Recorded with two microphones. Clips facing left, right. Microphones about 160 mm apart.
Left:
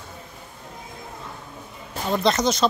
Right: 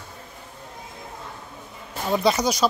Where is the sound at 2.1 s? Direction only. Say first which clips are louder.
Even; 5° right (ahead or behind).